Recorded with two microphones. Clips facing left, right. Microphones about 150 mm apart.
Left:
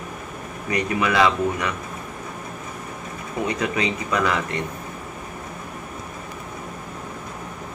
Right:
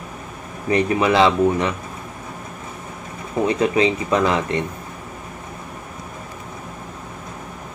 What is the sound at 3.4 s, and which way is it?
Speech, 25° right (ahead or behind).